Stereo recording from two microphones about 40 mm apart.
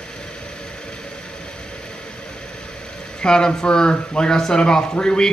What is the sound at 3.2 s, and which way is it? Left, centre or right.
Speech, left.